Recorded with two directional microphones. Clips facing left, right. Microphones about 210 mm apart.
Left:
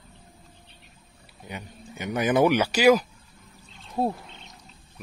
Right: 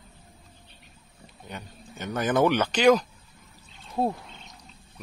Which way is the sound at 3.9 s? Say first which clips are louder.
Even; centre (ahead or behind).